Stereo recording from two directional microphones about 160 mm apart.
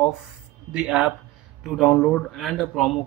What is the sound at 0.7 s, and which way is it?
Speech, 5° right (ahead or behind).